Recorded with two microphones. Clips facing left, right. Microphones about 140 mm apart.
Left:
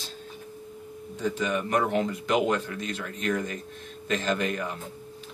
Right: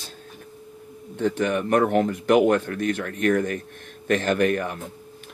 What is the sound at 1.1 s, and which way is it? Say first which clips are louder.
Speech: right 5 dB; 60° right (ahead or behind).